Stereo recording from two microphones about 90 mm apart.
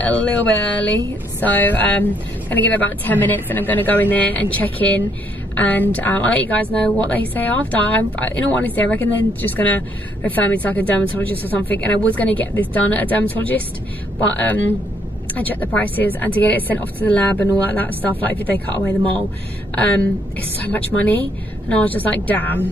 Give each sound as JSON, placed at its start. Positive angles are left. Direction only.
{"t": 0.0, "sound": "a woman's voice", "side_deg": 15}
{"t": 15.3, "sound": "a woman's voice", "side_deg": 20}
{"t": 20.6, "sound": "a woman's voice", "side_deg": 20}